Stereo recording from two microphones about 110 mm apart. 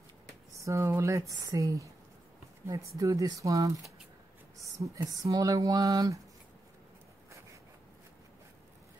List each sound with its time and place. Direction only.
0.6 s speech: 25° right (ahead or behind)